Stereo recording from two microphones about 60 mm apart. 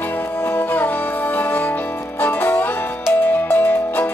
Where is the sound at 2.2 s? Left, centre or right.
Left.